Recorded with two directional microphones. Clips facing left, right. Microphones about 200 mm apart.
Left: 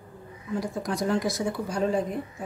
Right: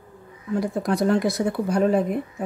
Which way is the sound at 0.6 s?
60° right (ahead or behind).